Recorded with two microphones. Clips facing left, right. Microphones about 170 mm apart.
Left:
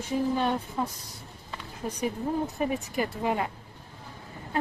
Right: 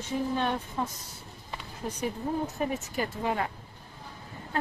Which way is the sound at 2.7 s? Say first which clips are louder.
Left 2 dB; 10° left (ahead or behind).